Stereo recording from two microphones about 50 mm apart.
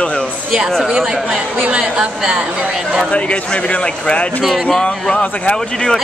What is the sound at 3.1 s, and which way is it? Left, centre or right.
Speech, left.